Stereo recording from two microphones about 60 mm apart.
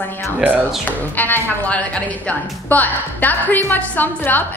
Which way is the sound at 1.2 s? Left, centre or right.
Left.